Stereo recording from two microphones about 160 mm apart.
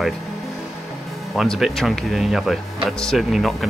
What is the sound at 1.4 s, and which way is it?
Speech, centre (ahead or behind).